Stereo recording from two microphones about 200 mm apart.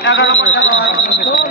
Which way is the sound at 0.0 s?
65° left (ahead or behind).